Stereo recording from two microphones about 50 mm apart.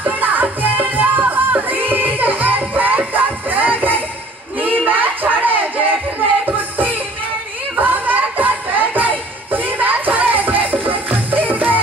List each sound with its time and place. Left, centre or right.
0.0 s music: right
4.6 s a sound: right
6.4 s music: right